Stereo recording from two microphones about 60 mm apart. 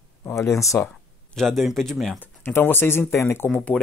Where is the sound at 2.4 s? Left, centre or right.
Left.